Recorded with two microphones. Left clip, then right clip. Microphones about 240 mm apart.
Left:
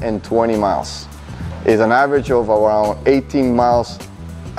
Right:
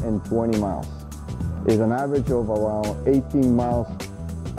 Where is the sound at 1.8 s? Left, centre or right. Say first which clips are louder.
Left 10 dB; centre.